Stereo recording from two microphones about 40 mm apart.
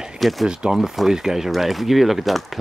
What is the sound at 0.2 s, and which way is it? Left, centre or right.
Speech, centre.